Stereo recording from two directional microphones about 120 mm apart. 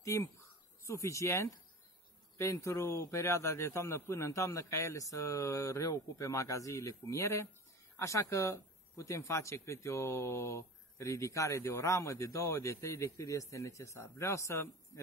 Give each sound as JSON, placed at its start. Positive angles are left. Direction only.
{"t": 0.0, "sound": "speech", "side_deg": 25}